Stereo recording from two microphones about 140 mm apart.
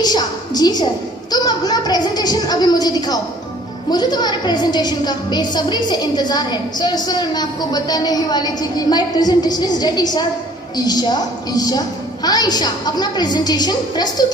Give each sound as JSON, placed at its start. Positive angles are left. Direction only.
{"t": 0.0, "sound": "a woman's voice", "side_deg": 30}
{"t": 1.3, "sound": "a sound", "side_deg": 30}
{"t": 3.9, "sound": "a woman's voice", "side_deg": 30}